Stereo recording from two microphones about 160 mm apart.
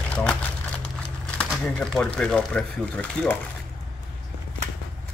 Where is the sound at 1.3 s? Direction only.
5° left (ahead or behind).